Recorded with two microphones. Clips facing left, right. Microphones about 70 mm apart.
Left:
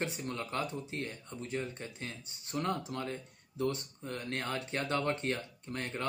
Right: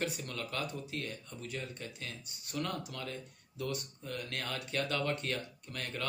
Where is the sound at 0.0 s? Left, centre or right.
Left.